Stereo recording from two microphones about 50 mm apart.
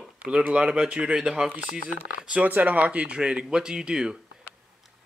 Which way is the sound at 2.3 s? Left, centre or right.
Right.